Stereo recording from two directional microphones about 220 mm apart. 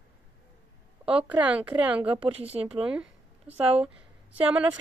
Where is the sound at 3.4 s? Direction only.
25° right (ahead or behind).